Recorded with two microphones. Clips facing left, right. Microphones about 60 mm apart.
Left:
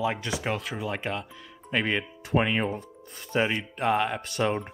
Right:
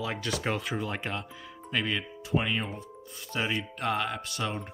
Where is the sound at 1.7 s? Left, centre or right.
Left.